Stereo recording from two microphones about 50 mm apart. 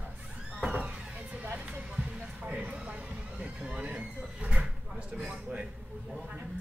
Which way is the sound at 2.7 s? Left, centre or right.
Right.